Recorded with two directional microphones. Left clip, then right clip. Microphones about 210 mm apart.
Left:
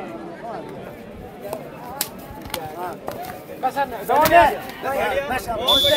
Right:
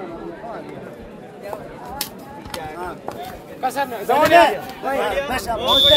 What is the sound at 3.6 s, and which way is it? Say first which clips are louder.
Speech: even; 60° right (ahead or behind).